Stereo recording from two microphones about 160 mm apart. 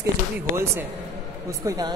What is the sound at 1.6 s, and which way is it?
Speech, 20° right (ahead or behind).